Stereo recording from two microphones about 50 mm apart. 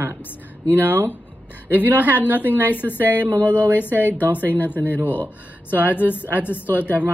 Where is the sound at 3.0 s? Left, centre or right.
Right.